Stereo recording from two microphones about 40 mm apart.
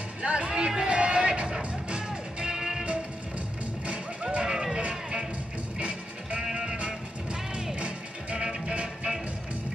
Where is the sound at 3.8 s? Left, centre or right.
Right.